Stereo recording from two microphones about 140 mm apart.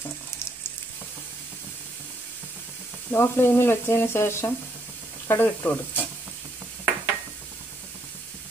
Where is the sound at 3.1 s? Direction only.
15° left (ahead or behind).